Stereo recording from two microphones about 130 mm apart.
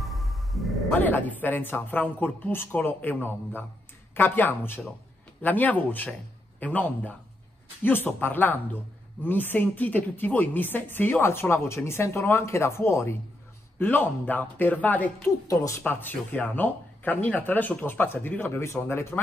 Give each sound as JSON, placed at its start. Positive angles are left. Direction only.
{"t": 0.0, "sound": "a sound", "side_deg": 0}
{"t": 0.9, "sound": "a woman's voice", "side_deg": 15}
{"t": 15.4, "sound": "a woman's voice", "side_deg": 25}